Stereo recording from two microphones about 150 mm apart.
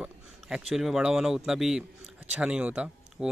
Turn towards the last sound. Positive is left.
turn(degrees=-10)  # may be behind; listen again after turning